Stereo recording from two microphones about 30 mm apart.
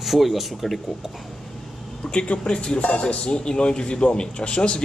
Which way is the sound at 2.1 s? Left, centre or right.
Left.